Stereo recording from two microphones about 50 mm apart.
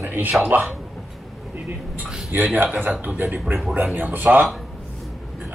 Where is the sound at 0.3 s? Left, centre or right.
Right.